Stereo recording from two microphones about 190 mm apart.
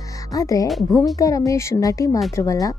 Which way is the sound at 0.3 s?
20° left (ahead or behind).